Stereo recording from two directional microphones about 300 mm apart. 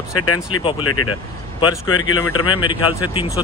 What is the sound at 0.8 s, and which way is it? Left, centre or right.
Speech, left.